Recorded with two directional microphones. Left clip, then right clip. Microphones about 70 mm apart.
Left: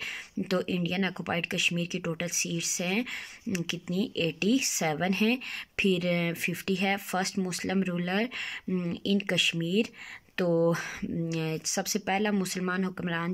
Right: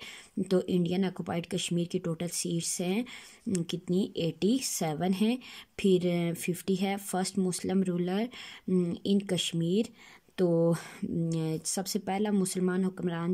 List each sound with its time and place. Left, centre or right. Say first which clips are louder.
0.4 s a woman's voice: right 2 dB; right